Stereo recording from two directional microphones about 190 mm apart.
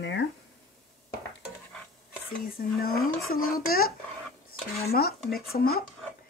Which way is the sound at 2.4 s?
50° left (ahead or behind).